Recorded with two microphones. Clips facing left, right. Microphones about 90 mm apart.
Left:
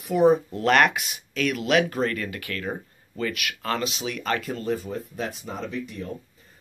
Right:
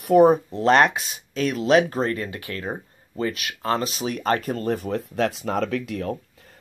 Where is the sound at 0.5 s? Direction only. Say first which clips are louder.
Right 2 dB; 30° right (ahead or behind).